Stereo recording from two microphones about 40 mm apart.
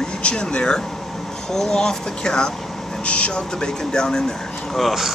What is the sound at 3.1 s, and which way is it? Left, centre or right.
Speech, left.